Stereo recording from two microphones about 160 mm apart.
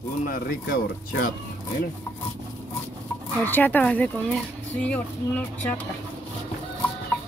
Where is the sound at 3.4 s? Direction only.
10° left (ahead or behind).